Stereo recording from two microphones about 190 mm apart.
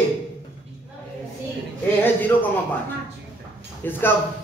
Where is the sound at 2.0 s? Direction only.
10° left (ahead or behind).